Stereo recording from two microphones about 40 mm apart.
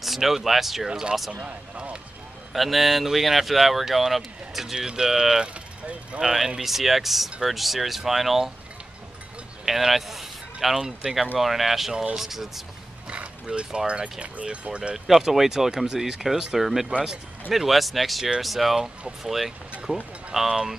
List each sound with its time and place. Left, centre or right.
0.0 s speech: centre
0.8 s speech: right
1.3 s speech: right
2.5 s speech: centre
4.7 s speech: centre
6.1 s speech: right
6.6 s speech: centre
7.2 s speech: centre
7.5 s speech: centre
9.7 s speech: centre
13.5 s speech: centre
15.0 s speech: centre
18.8 s speech: centre
20.3 s speech: centre